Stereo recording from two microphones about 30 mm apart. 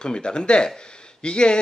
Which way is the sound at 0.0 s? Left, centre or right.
Left.